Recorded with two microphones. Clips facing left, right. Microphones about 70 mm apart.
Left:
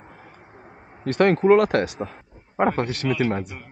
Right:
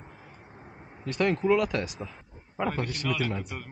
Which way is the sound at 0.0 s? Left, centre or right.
Left.